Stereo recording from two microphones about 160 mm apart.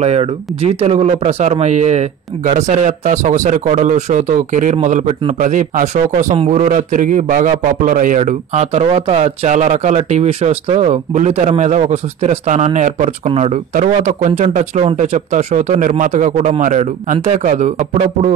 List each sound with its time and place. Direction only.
0.0 s speech: 40° right (ahead or behind)